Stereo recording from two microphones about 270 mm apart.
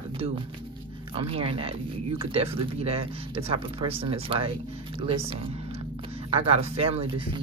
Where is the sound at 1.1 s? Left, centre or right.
Right.